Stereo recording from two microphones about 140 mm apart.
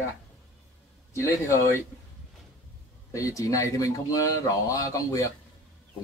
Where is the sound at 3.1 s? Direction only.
25° left (ahead or behind).